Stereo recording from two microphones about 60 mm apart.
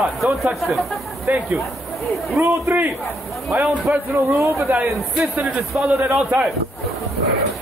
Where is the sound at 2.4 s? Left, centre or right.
Right.